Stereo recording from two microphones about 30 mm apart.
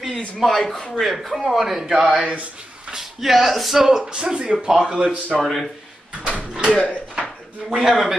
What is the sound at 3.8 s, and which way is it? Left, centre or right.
A woman's voice, right.